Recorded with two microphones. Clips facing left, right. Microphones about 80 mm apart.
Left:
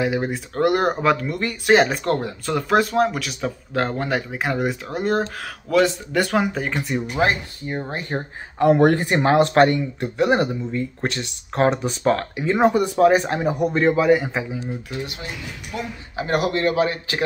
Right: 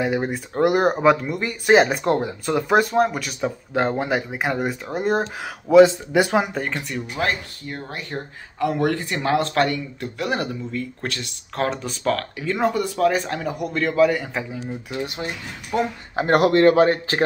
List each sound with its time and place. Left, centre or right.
0.0 s speech: centre
5.7 s speech: centre
6.5 s speech: centre
6.9 s speech: left
8.1 s speech: left
12.6 s speech: left
12.9 s speech: left; by 15.0 s centre
15.0 s speech: right